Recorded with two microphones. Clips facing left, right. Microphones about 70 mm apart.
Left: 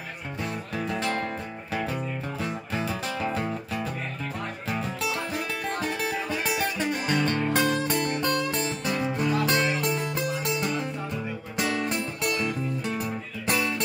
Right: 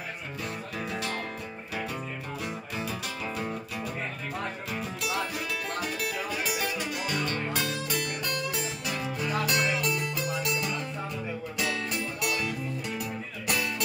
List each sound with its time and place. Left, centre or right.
0.8 s music: left
2.4 s music: left